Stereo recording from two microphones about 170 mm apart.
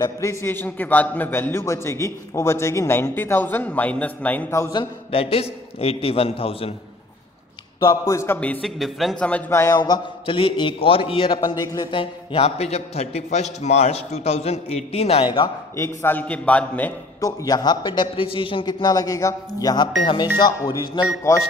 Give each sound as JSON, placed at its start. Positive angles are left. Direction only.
{"t": 0.0, "sound": "a man's voice", "side_deg": 15}
{"t": 5.1, "sound": "a man's voice", "side_deg": 35}
{"t": 7.8, "sound": "a man's voice", "side_deg": 20}
{"t": 15.7, "sound": "a man's voice", "side_deg": 15}
{"t": 17.2, "sound": "a man's voice", "side_deg": 20}